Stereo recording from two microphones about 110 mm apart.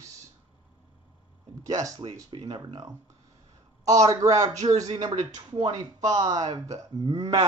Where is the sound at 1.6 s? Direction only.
30° right (ahead or behind).